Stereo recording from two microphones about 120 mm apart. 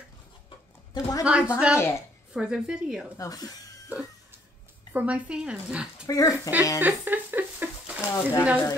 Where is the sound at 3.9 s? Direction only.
15° right (ahead or behind).